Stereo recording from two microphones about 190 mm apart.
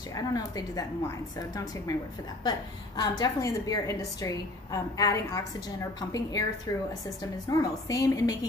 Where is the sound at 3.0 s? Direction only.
20° left (ahead or behind).